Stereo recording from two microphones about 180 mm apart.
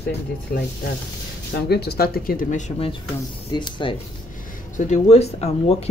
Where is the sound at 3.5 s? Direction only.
25° left (ahead or behind).